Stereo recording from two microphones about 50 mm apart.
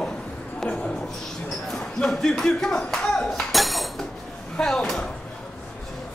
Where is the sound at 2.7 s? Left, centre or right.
Centre.